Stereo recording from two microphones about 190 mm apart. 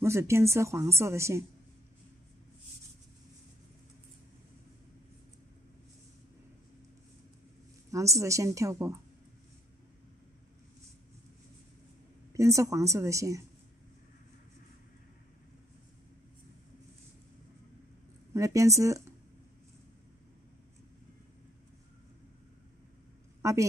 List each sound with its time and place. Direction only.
0.0 s speech: 15° right (ahead or behind)
7.9 s speech: 15° right (ahead or behind)
12.4 s speech: 15° right (ahead or behind)
18.3 s speech: 15° right (ahead or behind)
23.4 s a woman's voice: 15° right (ahead or behind)